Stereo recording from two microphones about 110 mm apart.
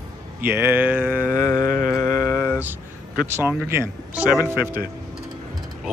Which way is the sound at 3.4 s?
20° right (ahead or behind).